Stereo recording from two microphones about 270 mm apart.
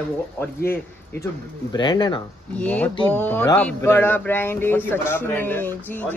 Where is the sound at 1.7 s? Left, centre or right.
Centre.